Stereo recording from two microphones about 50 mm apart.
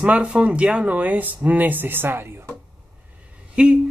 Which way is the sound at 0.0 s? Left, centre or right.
Right.